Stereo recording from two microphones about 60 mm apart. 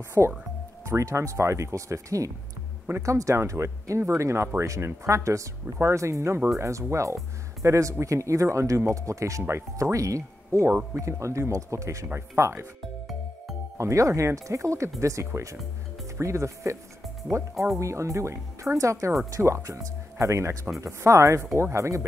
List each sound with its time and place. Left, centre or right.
0.2 s speech: right
13.7 s speech: right
17.7 s speech: right